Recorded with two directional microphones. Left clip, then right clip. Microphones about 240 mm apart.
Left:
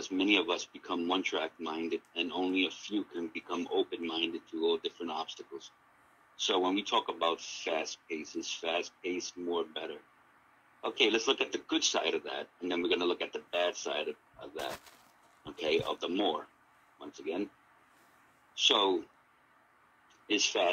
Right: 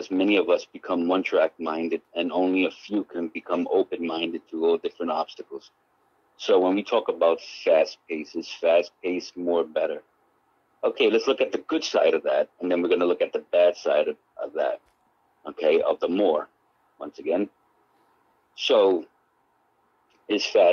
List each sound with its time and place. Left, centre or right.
0.2 s speech: centre
7.0 s speech: centre
7.3 s speech: centre
10.8 s a man's voice: centre
11.1 s speech: centre
18.6 s speech: centre
20.2 s speech: centre